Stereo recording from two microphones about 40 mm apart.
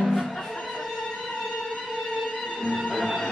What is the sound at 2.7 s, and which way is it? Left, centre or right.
Music, centre.